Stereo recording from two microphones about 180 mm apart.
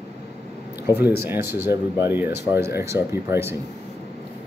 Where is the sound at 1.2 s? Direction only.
15° right (ahead or behind).